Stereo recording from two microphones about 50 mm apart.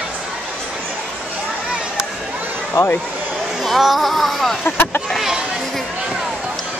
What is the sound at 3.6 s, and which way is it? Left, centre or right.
Speech, centre.